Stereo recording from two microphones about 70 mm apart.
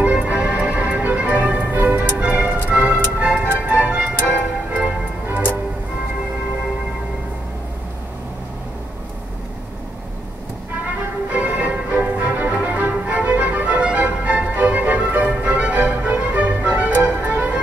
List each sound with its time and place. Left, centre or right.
0.0 s music: centre
2.1 s tick-tock: right
2.7 s music: right
3.2 s tick-tock: centre
11.2 s music: right